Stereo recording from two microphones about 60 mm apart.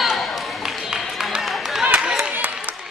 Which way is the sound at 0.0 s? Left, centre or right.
Centre.